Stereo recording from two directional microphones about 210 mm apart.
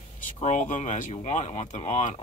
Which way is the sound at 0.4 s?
35° left (ahead or behind).